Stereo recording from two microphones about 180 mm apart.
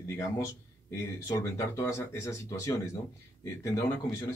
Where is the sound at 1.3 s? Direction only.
15° left (ahead or behind).